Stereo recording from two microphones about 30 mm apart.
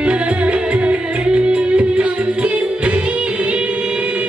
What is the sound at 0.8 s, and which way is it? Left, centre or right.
Music, right.